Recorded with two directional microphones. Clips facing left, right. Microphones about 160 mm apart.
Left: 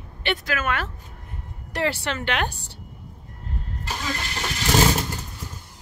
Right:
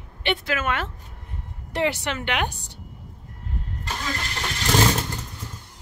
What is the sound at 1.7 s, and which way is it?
Speech, 20° right (ahead or behind).